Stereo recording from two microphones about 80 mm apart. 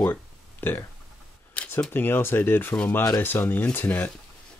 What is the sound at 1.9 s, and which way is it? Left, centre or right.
Speech, left.